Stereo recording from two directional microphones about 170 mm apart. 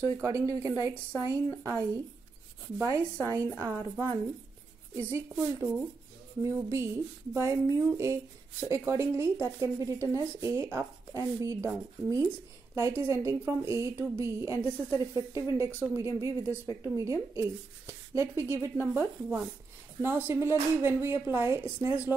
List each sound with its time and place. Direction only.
0.0 s a woman's voice: 15° right (ahead or behind)